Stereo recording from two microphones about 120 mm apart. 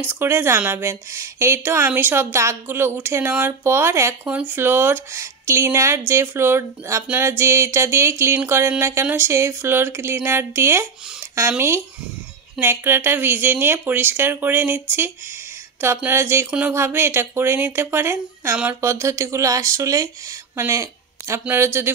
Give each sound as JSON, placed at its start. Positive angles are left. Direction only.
{"t": 0.1, "sound": "a woman's voice", "side_deg": -20}
{"t": 16.7, "sound": "a woman's voice", "side_deg": -20}